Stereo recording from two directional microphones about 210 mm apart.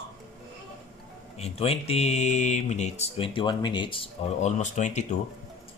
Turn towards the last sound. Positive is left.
turn(degrees=35)  # may be behind; listen again after turning